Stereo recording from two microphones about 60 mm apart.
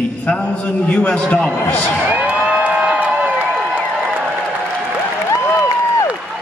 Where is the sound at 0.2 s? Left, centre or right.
Left.